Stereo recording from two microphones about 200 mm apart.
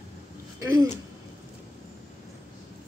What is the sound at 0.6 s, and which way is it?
Speech, 15° right (ahead or behind).